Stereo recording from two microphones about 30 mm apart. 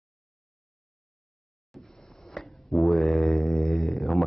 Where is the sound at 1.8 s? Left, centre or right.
Centre.